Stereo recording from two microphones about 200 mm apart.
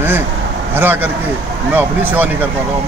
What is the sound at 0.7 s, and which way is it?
Speech, 10° right (ahead or behind).